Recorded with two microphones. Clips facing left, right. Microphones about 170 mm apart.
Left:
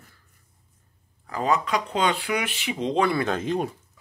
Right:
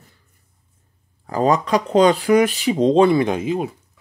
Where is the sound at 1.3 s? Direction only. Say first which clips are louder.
Right 7 dB; 35° right (ahead or behind).